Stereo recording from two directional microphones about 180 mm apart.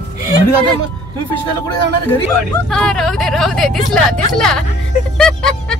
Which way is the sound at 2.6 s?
5° left (ahead or behind).